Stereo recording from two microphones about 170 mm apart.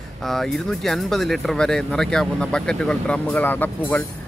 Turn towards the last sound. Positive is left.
turn(degrees=10)  # may be behind; listen again after turning